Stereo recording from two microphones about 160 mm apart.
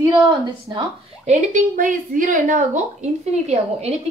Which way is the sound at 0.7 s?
25° right (ahead or behind).